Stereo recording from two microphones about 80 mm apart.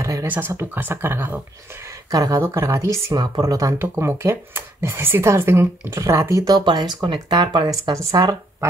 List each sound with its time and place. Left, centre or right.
0.0 s a sound: right
0.7 s speech: right
2.0 s speech: right
2.4 s speech: right
3.1 s speech: right
3.7 s speech: right
6.6 s speech: right
7.9 s speech: right